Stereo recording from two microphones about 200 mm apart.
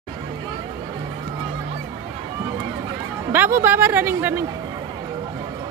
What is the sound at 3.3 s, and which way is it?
Speech, 10° right (ahead or behind).